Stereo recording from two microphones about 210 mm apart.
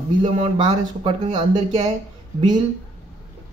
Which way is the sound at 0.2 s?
25° right (ahead or behind).